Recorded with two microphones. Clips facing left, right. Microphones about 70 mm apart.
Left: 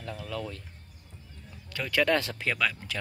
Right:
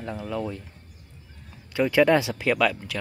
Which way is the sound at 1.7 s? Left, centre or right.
Centre.